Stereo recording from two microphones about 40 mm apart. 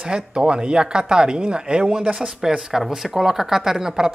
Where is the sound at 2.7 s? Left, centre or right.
Centre.